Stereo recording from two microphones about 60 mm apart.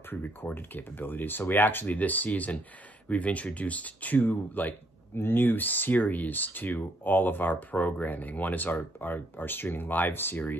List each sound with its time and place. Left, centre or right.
0.1 s speech: left